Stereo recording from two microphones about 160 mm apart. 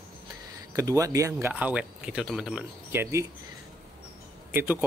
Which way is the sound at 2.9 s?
15° right (ahead or behind).